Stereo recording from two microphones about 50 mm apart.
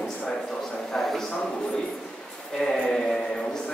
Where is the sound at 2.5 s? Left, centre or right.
Centre.